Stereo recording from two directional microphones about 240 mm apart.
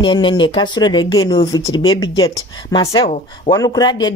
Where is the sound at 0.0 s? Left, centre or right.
Left.